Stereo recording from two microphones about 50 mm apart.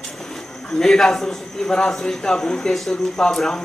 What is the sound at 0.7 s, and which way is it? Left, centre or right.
Speech, centre.